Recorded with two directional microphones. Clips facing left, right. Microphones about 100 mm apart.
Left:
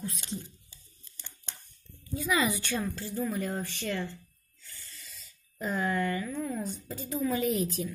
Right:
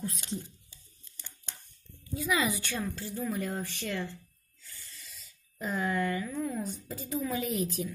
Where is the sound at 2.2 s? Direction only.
Centre (ahead or behind).